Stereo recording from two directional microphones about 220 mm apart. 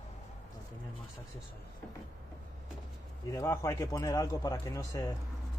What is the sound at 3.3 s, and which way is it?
Speech, 15° left (ahead or behind).